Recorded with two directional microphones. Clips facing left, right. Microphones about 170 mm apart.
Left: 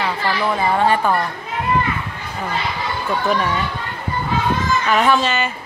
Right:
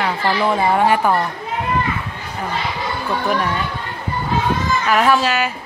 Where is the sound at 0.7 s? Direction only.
10° right (ahead or behind).